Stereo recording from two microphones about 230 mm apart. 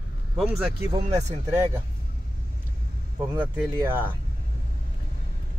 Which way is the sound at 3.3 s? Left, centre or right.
Centre.